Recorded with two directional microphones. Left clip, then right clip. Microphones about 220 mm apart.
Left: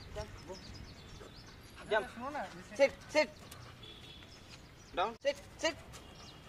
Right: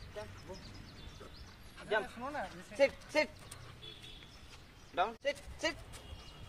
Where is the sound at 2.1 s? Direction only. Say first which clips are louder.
Even; 40° right (ahead or behind).